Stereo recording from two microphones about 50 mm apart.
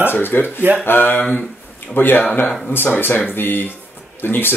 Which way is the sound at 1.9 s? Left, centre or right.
Left.